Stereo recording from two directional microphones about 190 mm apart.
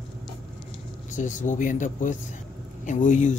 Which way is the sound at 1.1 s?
40° left (ahead or behind).